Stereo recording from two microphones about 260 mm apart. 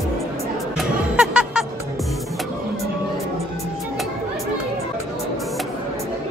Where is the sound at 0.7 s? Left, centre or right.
Centre.